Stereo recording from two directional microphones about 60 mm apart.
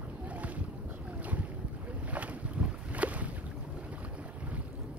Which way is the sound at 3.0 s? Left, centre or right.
Right.